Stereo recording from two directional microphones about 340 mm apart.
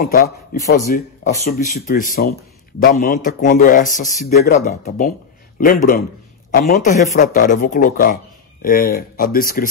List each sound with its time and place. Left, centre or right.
0.0 s speech: left